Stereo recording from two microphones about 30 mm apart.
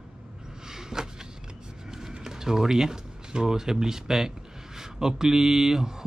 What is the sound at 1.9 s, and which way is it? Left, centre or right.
Music, centre.